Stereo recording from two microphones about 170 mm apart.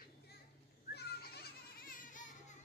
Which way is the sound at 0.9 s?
70° left (ahead or behind).